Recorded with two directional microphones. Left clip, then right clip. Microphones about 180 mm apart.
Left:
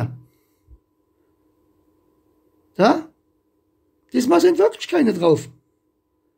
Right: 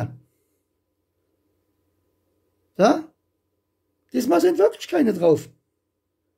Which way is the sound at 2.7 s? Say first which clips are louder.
Left 1 dB; centre (ahead or behind).